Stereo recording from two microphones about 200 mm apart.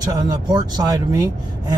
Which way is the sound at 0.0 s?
20° right (ahead or behind).